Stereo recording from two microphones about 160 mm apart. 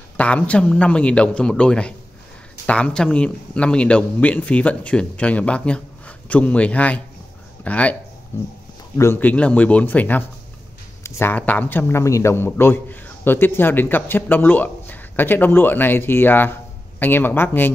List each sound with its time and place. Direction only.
0.2 s a man's voice: 10° left (ahead or behind)